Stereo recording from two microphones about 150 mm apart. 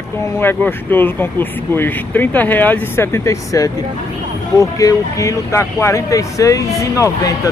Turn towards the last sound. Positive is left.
turn(degrees=20)  # may be behind; listen again after turning